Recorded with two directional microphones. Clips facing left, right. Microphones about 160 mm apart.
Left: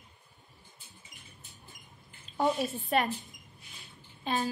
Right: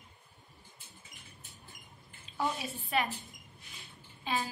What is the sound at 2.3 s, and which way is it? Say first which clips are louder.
Speech: left 6 dB; 50° left (ahead or behind).